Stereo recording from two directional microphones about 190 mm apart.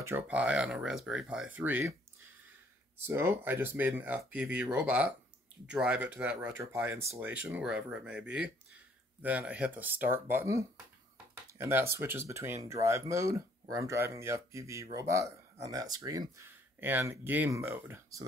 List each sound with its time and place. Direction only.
0.0 s speech: 10° right (ahead or behind)
3.0 s speech: 15° right (ahead or behind)